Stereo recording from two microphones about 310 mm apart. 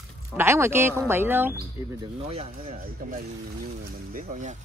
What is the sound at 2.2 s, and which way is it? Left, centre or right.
Speech, centre.